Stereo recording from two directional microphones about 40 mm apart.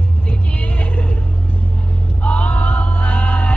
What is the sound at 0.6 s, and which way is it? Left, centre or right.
Vehicle, left.